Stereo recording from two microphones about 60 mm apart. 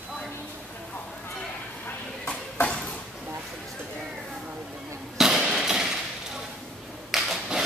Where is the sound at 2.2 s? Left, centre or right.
Centre.